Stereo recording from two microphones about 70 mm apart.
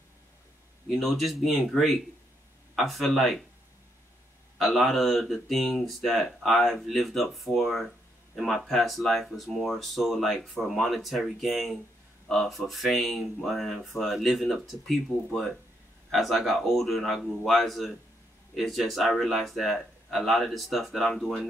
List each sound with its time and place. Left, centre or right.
0.8 s speech: centre
4.6 s speech: centre